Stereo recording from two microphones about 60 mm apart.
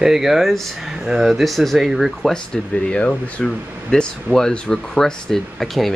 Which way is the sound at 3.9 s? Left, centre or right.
Centre.